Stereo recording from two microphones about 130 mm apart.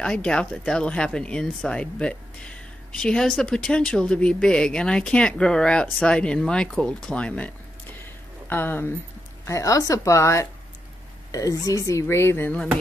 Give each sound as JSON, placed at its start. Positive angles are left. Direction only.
{"t": 0.0, "sound": "speech", "side_deg": 5}